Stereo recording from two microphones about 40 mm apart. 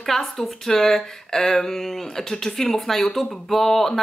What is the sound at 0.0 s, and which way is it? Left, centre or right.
Speech, centre.